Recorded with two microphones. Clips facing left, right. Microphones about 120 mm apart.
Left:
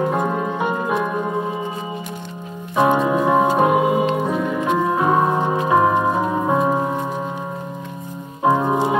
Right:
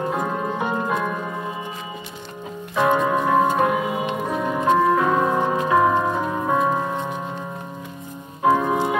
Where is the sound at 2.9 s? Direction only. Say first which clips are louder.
Left 2 dB; 5° left (ahead or behind).